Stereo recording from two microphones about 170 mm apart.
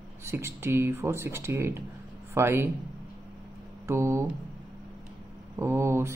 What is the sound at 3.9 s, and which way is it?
Speech, 15° right (ahead or behind).